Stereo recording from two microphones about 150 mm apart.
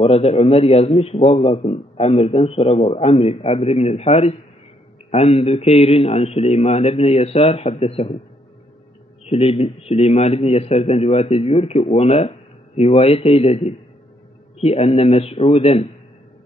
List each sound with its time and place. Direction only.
0.0 s a man's voice: 40° left (ahead or behind)
9.2 s a man's voice: 40° left (ahead or behind)